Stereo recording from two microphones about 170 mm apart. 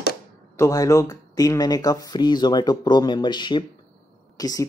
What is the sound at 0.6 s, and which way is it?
Speech, 20° left (ahead or behind).